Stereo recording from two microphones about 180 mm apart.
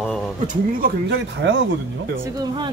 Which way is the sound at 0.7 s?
60° right (ahead or behind).